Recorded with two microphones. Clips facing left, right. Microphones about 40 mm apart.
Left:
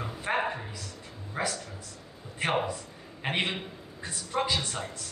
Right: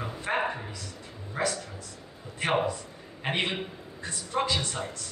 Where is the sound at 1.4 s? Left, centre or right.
Centre.